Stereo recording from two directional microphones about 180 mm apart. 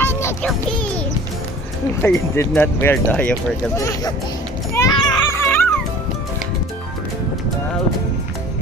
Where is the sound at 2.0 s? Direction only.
10° left (ahead or behind).